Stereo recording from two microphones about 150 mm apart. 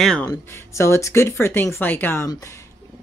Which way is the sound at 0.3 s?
20° left (ahead or behind).